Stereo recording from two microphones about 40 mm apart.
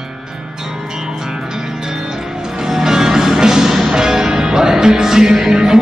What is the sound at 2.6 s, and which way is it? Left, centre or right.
Music, centre.